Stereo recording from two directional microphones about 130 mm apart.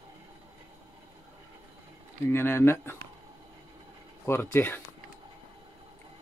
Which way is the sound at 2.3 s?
15° left (ahead or behind).